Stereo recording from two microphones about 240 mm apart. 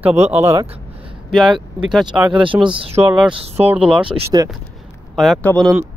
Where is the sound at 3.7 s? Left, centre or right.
Centre.